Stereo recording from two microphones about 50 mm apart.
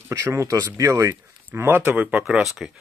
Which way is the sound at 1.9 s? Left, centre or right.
Right.